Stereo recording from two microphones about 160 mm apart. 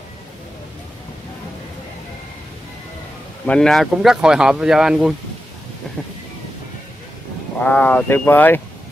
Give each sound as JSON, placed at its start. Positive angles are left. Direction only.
{"t": 3.4, "sound": "speech", "side_deg": 5}
{"t": 7.6, "sound": "speech", "side_deg": 10}